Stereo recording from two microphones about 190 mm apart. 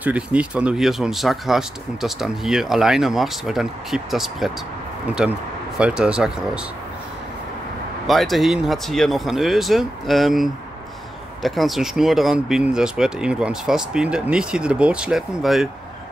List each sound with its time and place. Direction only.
0.0 s speech: 5° right (ahead or behind)
8.1 s speech: centre (ahead or behind)